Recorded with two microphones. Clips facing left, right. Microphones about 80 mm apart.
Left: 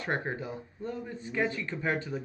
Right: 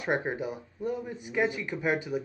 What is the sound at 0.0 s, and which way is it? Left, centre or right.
Speech, centre.